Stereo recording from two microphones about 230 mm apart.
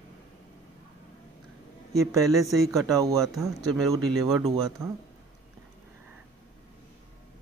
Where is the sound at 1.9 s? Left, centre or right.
Centre.